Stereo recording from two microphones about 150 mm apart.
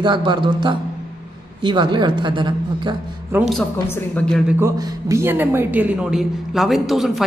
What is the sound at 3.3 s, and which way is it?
Speech, 15° right (ahead or behind).